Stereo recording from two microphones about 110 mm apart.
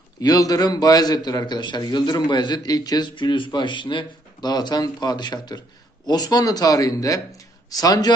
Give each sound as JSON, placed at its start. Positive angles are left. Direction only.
{"t": 0.2, "sound": "a man's voice", "side_deg": 35}